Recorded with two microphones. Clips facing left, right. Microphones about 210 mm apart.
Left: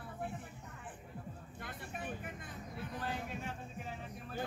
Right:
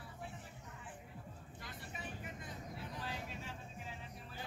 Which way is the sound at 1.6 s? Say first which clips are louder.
Left 5 dB; 55° left (ahead or behind).